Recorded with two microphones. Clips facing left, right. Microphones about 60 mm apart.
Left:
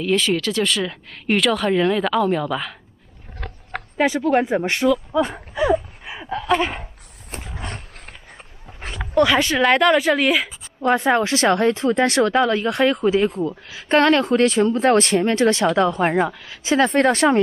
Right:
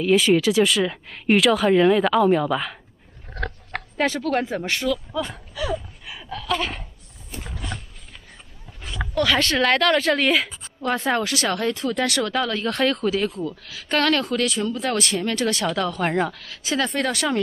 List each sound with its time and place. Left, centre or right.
0.0 s speech: centre
4.0 s speech: centre
7.5 s a sound: left
9.1 s speech: centre
10.8 s speech: left
16.1 s speech: centre; by 17.4 s left